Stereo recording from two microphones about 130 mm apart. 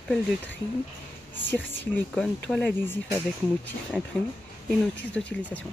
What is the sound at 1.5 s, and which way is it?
Speech, 15° left (ahead or behind).